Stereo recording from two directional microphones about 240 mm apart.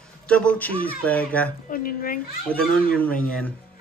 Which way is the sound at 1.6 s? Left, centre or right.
Left.